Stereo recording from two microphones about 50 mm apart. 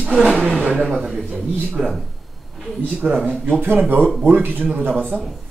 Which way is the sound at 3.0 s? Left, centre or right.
Right.